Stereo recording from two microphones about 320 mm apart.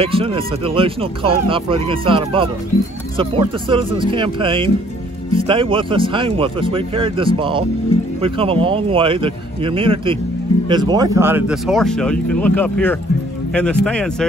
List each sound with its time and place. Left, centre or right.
0.0 s speech: centre